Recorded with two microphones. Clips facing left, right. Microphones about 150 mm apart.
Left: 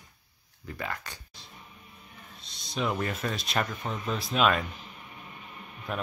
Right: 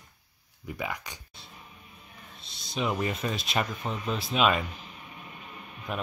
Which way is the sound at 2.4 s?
Centre (ahead or behind).